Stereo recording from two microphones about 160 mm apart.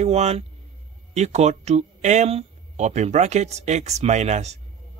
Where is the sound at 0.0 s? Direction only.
40° right (ahead or behind).